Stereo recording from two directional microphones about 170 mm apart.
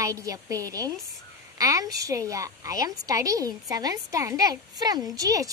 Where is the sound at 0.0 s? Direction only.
20° right (ahead or behind).